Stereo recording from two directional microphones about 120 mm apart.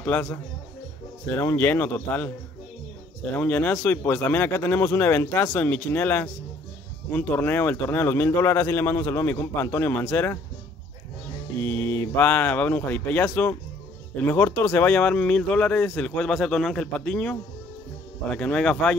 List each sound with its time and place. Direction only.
0.0 s speech: 15° left (ahead or behind)
3.3 s speech: 15° left (ahead or behind)
11.6 s speech: 20° left (ahead or behind)